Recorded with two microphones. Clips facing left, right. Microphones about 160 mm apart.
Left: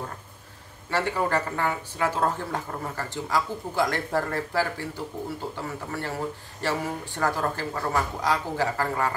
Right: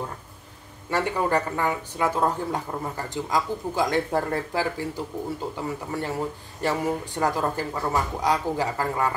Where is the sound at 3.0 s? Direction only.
15° right (ahead or behind).